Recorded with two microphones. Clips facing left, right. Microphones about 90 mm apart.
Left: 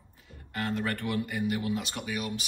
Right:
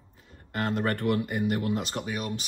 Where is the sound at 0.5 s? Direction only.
45° right (ahead or behind).